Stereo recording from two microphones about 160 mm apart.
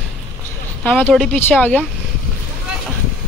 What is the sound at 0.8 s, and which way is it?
Speech, 5° left (ahead or behind).